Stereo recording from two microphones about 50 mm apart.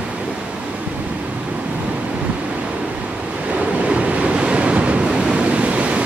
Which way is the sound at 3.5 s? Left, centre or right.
Right.